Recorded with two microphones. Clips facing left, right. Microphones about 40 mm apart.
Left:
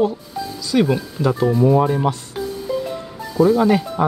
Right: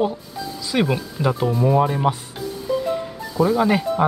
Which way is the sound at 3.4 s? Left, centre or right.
Centre.